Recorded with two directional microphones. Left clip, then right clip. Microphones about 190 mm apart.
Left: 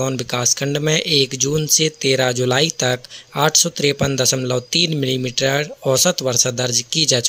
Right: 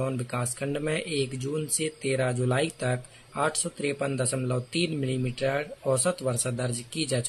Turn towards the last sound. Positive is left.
turn(degrees=30)  # may be behind; listen again after turning